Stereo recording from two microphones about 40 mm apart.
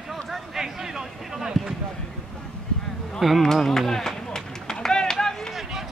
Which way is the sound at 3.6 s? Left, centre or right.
Centre.